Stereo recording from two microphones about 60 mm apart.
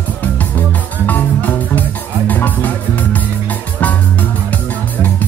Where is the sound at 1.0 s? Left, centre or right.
Left.